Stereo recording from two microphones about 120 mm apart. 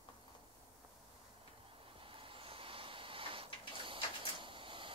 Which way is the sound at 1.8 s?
50° right (ahead or behind).